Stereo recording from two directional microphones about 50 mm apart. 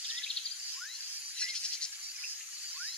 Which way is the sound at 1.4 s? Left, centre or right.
Centre.